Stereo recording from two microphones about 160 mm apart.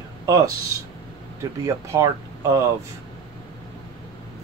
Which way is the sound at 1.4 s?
20° right (ahead or behind).